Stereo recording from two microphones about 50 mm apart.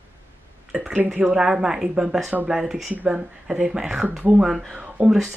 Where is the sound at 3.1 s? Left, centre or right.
Centre.